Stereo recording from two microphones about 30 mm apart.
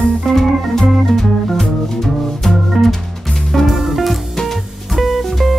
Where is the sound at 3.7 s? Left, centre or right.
Centre.